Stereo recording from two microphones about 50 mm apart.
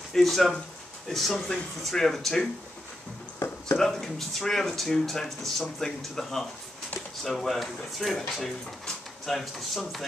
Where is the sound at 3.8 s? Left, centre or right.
Centre.